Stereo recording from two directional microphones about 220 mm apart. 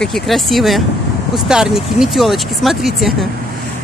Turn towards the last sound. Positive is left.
turn(degrees=0)  # may be behind; listen again after turning